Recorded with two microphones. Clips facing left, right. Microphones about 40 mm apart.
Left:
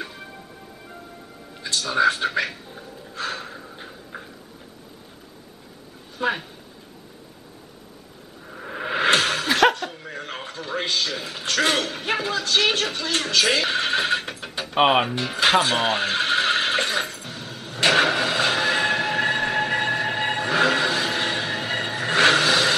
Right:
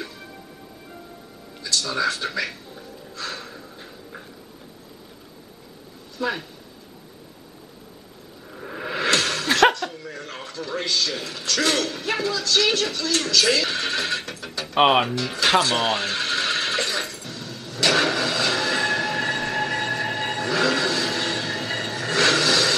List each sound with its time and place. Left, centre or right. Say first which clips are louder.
1.6 s speech: left 4 dB; left
2.7 s music: left 1 dB; left
6.1 s speech: left 2 dB; left
8.5 s music: left 3 dB; centre
9.9 s a sound: left 1 dB; left
11.1 s speech: left 1 dB; centre
14.4 s music: left 1 dB; centre
14.9 s speech: even; centre
15.1 s music: left 1 dB; left